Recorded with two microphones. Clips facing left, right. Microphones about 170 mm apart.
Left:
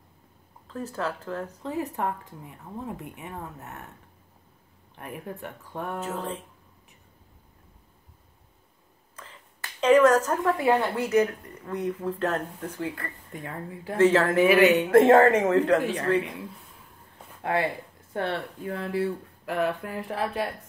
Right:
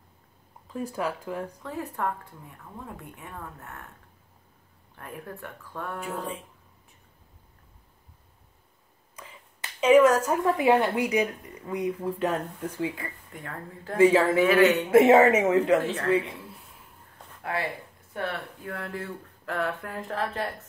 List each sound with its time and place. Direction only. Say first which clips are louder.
0.7 s speech: right 1 dB; 10° right (ahead or behind)
1.6 s a woman's voice: left 2 dB; 20° left (ahead or behind)
4.9 s a woman's voice: left 2 dB; 20° left (ahead or behind)
5.9 s speech: even; 10° right (ahead or behind)
9.1 s a woman's voice: right 1 dB; 10° right (ahead or behind)
13.3 s speech: left 3 dB; 15° left (ahead or behind)
13.9 s speech: right 1 dB; 10° right (ahead or behind)
14.4 s speech: left 4 dB; 15° left (ahead or behind)
14.9 s speech: even; 5° right (ahead or behind)
15.8 s speech: left 1 dB; 15° left (ahead or behind)
17.4 s speech: left 5 dB; 25° left (ahead or behind)
18.7 s speech: left 7 dB; 15° left (ahead or behind)